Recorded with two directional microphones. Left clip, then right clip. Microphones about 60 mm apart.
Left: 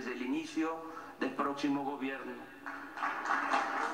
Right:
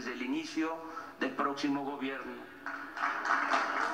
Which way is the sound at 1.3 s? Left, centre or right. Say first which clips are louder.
Right 2 dB; centre.